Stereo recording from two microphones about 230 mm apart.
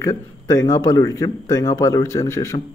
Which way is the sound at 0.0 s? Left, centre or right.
Centre.